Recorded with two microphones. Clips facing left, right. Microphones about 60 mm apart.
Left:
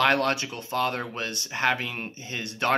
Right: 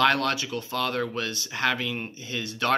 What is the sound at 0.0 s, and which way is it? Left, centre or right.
Speech, left.